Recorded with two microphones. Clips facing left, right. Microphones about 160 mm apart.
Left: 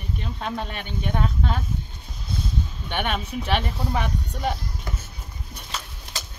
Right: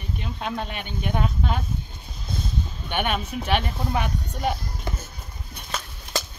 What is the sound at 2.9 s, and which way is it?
Speech, 5° right (ahead or behind).